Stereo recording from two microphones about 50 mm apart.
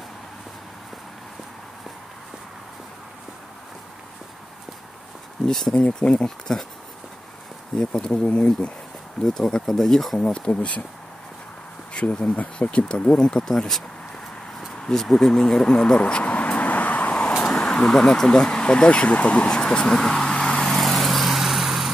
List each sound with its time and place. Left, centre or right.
5.5 s speech: centre
5.8 s speech: left
7.7 s speech: centre
9.2 s speech: centre
10.1 s speech: left
11.9 s speech: left; by 13.8 s centre
14.9 s speech: centre
16.0 s vehicle: left
17.4 s vehicle: centre
18.0 s speech: centre
19.6 s vehicle: centre
20.7 s vehicle: centre